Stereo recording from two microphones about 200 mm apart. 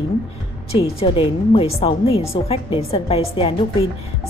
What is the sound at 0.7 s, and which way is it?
Speech, 30° left (ahead or behind).